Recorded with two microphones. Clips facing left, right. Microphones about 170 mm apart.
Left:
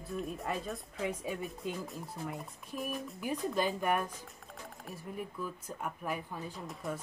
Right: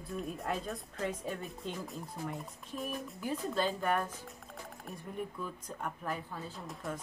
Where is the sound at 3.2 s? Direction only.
15° left (ahead or behind).